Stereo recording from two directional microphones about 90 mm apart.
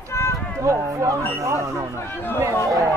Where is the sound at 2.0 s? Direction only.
20° left (ahead or behind).